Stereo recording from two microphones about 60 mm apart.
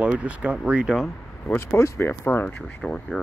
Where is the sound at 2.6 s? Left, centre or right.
Centre.